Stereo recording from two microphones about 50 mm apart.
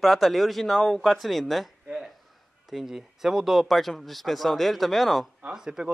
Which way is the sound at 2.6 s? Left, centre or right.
Centre.